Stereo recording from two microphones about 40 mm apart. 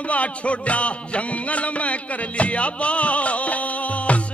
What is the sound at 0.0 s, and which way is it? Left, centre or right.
Music, left.